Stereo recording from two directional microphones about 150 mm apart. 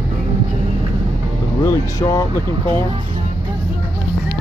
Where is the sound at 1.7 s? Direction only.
25° left (ahead or behind).